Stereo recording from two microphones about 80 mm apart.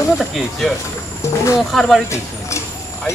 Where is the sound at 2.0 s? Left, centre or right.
Left.